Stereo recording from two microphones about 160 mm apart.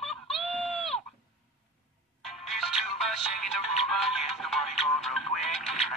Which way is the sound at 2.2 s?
Centre (ahead or behind).